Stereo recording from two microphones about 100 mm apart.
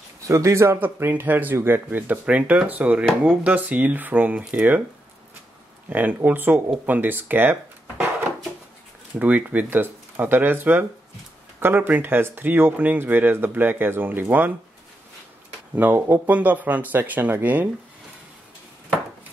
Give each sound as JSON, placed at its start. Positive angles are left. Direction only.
{"t": 0.3, "sound": "speech", "side_deg": -30}
{"t": 5.9, "sound": "speech", "side_deg": -15}
{"t": 9.2, "sound": "speech", "side_deg": -15}
{"t": 15.7, "sound": "speech", "side_deg": -20}